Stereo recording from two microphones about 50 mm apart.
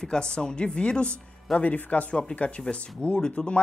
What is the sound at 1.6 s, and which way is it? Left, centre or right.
A woman's voice, left.